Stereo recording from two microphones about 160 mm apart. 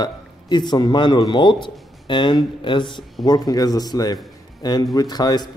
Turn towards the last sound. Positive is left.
turn(degrees=25)  # may be behind; listen again after turning